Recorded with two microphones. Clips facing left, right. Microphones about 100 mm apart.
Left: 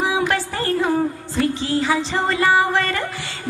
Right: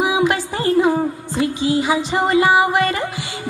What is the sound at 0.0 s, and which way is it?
Music, 15° right (ahead or behind).